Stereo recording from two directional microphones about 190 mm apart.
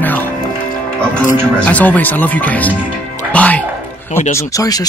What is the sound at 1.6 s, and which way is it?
Speech, 10° left (ahead or behind).